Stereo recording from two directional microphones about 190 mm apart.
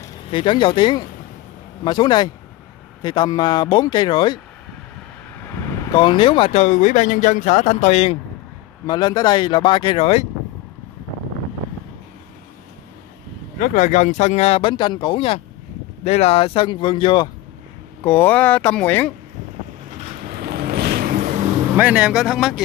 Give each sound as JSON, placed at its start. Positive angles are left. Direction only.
{"t": 0.3, "sound": "speech", "side_deg": 25}
{"t": 5.9, "sound": "speech", "side_deg": 25}
{"t": 8.8, "sound": "speech", "side_deg": 20}
{"t": 13.6, "sound": "speech", "side_deg": 45}
{"t": 18.0, "sound": "speech", "side_deg": 10}
{"t": 20.3, "sound": "a sound", "side_deg": -50}
{"t": 21.7, "sound": "speech", "side_deg": -5}